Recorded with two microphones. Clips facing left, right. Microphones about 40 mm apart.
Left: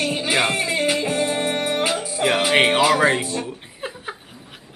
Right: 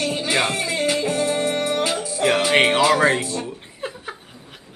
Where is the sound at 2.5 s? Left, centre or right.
Centre.